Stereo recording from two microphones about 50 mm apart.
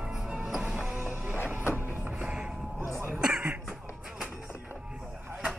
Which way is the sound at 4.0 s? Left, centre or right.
Centre.